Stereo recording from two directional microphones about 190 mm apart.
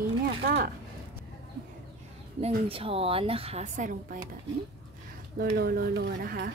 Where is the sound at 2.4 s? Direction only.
30° right (ahead or behind); by 4.2 s 45° right (ahead or behind).